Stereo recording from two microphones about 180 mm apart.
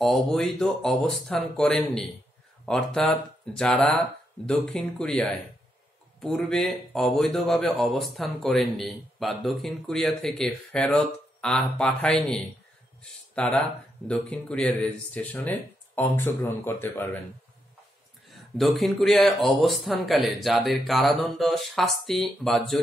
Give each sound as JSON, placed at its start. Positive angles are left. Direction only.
{"t": 0.0, "sound": "speech", "side_deg": 0}
{"t": 13.3, "sound": "speech", "side_deg": 5}
{"t": 18.6, "sound": "speech", "side_deg": 0}